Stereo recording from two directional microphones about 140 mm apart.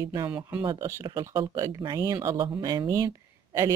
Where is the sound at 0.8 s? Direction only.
25° right (ahead or behind).